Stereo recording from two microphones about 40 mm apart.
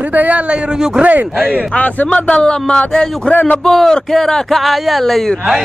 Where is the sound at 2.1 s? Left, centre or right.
Left.